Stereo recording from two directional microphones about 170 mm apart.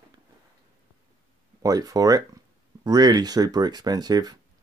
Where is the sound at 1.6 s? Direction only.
20° right (ahead or behind).